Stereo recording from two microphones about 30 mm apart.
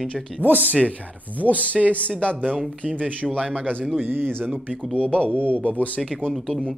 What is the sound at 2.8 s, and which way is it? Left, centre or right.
Speech, right.